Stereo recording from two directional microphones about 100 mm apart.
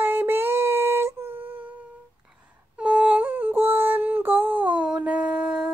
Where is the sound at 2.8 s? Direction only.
15° right (ahead or behind).